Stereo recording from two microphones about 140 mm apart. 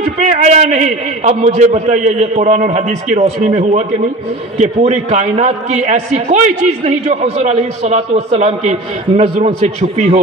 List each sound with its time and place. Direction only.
0.2 s a man's voice: 55° right (ahead or behind)